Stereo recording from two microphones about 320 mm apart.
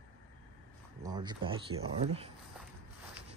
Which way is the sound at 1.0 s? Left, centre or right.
Centre.